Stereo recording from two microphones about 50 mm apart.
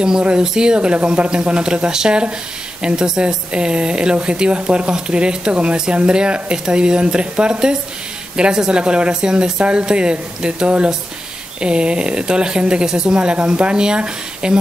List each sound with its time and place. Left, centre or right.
0.0 s speech: centre